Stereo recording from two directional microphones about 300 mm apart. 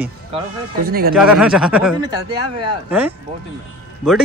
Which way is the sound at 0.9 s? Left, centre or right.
Right.